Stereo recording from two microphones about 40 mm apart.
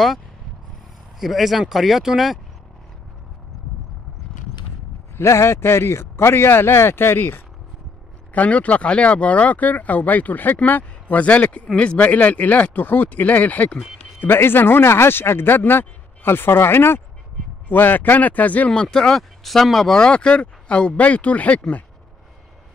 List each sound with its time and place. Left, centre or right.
1.2 s speech: centre
5.1 s speech: left
8.3 s speech: left
14.2 s speech: left
17.6 s speech: left
18.7 s speech: centre
20.0 s speech: left